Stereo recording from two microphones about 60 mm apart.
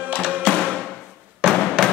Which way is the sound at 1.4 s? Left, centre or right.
Centre.